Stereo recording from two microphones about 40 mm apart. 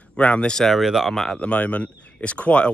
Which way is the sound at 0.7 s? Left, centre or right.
Centre.